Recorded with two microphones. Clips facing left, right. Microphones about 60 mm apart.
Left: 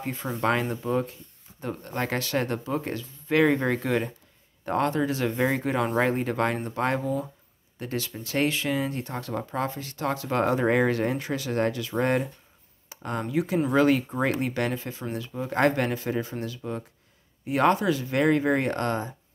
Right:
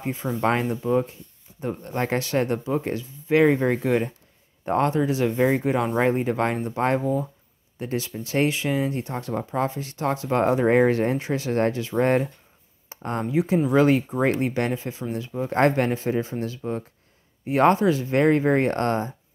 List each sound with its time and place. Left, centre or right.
0.0 s speech: centre
0.7 s speech: centre
1.6 s speech: centre
5.3 s speech: centre; by 12.3 s right
12.9 s a sound: right
13.2 s speech: right